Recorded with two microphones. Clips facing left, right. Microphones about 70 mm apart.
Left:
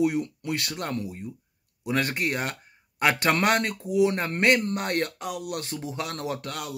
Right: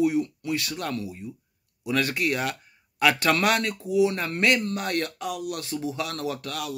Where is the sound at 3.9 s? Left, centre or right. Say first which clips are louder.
Right 1 dB; left.